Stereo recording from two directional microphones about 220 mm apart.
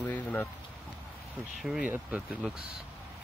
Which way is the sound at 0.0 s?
5° left (ahead or behind).